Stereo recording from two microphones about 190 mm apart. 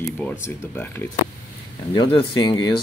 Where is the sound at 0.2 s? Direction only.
10° left (ahead or behind).